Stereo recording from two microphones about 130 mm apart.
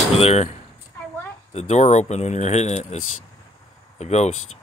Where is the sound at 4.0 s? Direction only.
60° left (ahead or behind).